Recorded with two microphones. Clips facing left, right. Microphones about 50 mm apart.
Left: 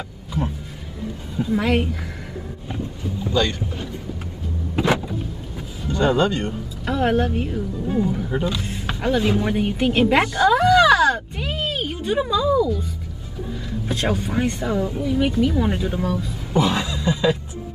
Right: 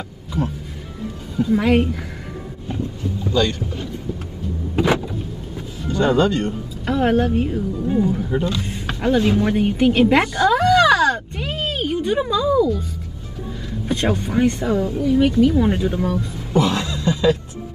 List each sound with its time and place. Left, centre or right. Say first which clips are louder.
1.3 s speech: right 4 dB; centre
3.3 s speech: right 2 dB; centre
4.7 s vehicle: right 2 dB; centre
6.1 s speech: right 2 dB; centre
6.9 s speech: right 2 dB; centre
8.1 s a sound: right 2 dB; centre
13.8 s speech: right 3 dB; centre
16.5 s a sound: right 1 dB; centre